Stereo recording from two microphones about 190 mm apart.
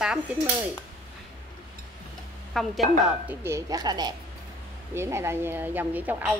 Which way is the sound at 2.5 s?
Centre (ahead or behind).